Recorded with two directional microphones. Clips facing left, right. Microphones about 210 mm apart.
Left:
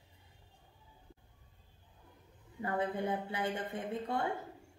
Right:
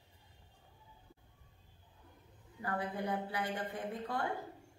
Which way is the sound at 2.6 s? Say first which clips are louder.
Left 4 dB; 25° left (ahead or behind).